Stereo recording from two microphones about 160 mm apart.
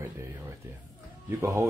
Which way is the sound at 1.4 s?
15° right (ahead or behind).